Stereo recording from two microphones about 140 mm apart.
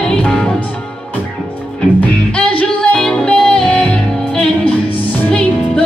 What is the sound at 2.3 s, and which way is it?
Music, 5° left (ahead or behind).